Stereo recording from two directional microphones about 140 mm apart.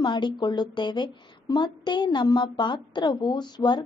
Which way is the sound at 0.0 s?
30° left (ahead or behind).